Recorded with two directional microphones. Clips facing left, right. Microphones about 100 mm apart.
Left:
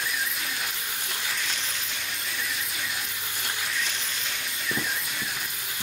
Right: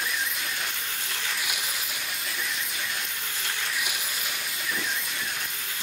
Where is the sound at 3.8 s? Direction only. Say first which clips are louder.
Even; 10° right (ahead or behind).